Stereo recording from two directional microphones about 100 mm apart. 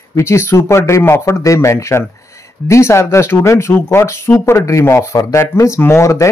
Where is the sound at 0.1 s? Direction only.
30° left (ahead or behind).